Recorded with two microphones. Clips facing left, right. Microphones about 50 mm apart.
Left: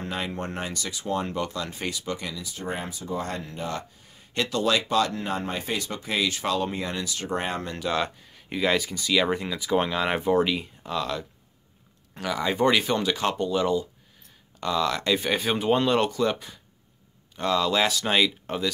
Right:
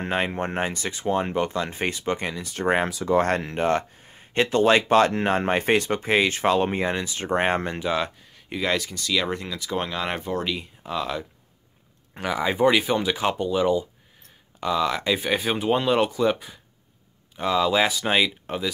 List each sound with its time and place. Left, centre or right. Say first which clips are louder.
0.0 s speech: right 6 dB; right
2.5 s speech: right 12 dB; right
4.0 s speech: right 5 dB; right
7.9 s speech: right 1 dB; centre
10.8 s speech: right 1 dB; centre
12.1 s speech: right 2 dB; right
12.5 s speech: right 2 dB; centre